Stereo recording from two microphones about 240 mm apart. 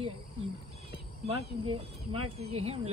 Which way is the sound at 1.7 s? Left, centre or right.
Right.